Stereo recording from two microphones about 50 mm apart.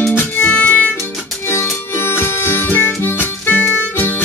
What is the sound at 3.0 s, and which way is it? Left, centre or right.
Harmonica, left.